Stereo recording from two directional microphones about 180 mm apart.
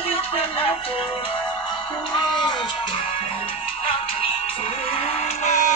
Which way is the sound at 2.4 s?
25° left (ahead or behind).